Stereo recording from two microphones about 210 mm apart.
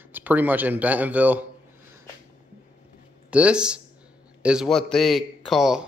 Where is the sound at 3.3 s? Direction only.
5° right (ahead or behind).